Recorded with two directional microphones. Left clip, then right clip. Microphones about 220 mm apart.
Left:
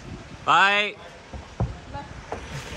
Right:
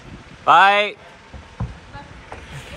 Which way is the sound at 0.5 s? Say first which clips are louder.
Right 6 dB; 5° left (ahead or behind).